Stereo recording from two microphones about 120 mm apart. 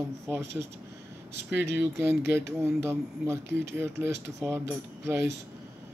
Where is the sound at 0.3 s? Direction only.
25° right (ahead or behind).